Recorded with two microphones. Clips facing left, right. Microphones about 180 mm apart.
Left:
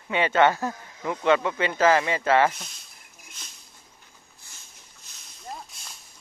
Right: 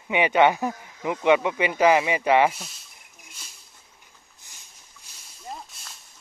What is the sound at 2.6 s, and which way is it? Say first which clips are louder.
Speech: right 2 dB; 5° right (ahead or behind).